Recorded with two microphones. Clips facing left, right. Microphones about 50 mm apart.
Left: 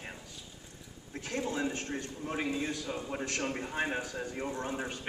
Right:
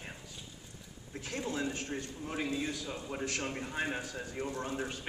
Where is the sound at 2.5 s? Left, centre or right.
Left.